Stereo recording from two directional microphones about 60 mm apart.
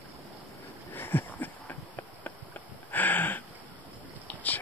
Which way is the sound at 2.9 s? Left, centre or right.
Left.